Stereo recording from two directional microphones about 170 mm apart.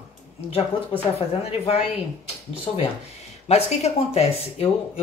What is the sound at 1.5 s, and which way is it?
Speech, 35° left (ahead or behind).